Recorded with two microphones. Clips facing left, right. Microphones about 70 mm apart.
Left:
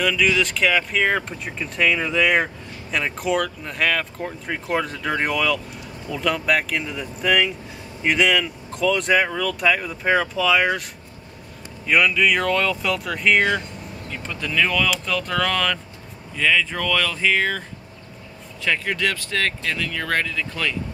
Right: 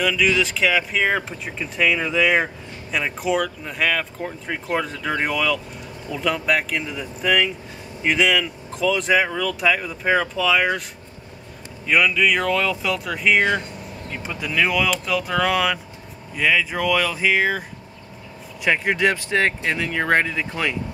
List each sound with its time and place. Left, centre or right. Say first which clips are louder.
0.0 s speech: even; centre
11.8 s speech: even; centre; by 20.7 s right